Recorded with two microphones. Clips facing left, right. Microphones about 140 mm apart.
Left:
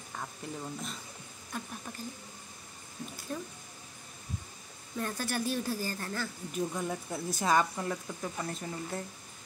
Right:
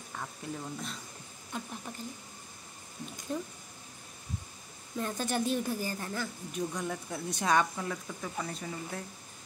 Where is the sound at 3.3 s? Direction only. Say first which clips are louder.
Right 3 dB; 20° right (ahead or behind).